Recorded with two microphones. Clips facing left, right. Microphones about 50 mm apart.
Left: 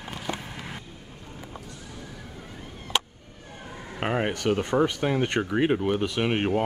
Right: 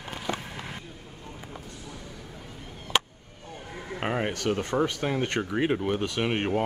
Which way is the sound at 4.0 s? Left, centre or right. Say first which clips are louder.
Left 2 dB; centre.